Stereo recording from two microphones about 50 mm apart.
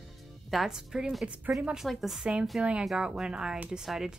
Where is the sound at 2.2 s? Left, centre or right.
Centre.